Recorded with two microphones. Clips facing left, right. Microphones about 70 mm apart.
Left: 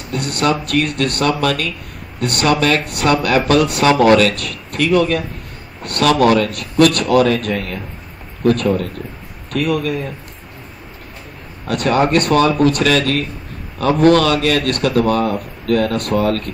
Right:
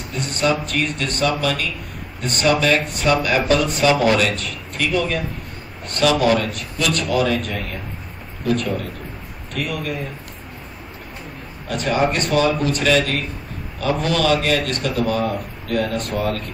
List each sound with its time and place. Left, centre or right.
0.1 s speech: left
11.6 s speech: left